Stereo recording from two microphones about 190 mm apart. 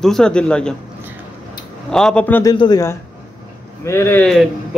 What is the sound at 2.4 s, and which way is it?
A man's voice, 20° left (ahead or behind).